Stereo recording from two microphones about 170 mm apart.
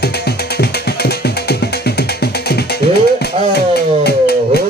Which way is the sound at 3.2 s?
70° left (ahead or behind).